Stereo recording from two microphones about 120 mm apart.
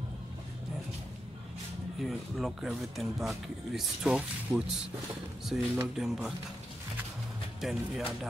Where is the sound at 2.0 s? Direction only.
Centre (ahead or behind).